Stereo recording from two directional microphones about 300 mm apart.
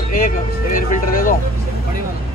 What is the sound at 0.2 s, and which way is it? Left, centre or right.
Speech, left.